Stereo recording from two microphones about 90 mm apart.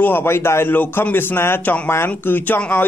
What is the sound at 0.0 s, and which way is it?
A man's voice, 25° left (ahead or behind).